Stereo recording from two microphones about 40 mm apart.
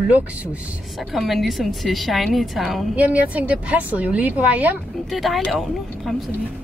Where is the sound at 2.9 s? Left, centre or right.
Right.